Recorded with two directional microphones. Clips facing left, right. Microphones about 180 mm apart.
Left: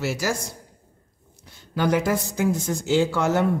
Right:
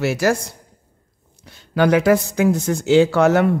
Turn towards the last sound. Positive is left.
turn(degrees=-75)  # may be behind; listen again after turning